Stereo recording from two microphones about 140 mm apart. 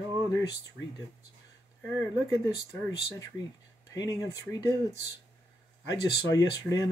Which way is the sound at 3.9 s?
25° left (ahead or behind).